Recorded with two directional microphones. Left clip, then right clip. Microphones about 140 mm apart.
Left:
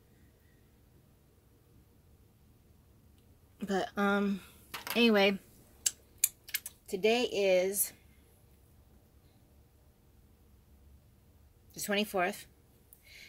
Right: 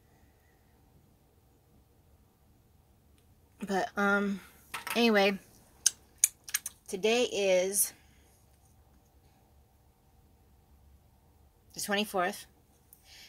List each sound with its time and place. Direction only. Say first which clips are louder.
3.5 s speech: right 2 dB; 30° left (ahead or behind)
4.6 s a sound: right 3 dB; 10° left (ahead or behind)
4.9 s a woman's voice: right 1 dB; 25° left (ahead or behind)
6.9 s a woman's voice: right 1 dB; 20° left (ahead or behind)
11.7 s a woman's voice: right 1 dB; 20° left (ahead or behind)